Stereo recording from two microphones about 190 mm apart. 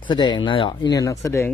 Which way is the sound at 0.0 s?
25° left (ahead or behind).